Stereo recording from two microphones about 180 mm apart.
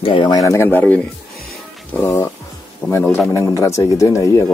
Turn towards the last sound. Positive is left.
turn(degrees=15)  # may be behind; listen again after turning